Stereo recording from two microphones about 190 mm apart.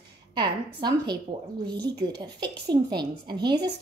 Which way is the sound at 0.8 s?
20° right (ahead or behind).